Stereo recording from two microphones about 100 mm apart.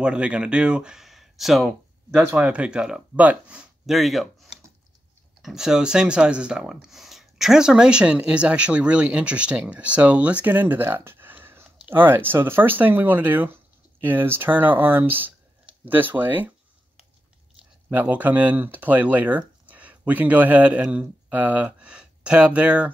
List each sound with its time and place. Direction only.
0.0 s speech: 10° right (ahead or behind)
2.3 s speech: 10° right (ahead or behind)
3.8 s speech: centre (ahead or behind); by 16.5 s 20° right (ahead or behind)
17.8 s speech: 15° right (ahead or behind)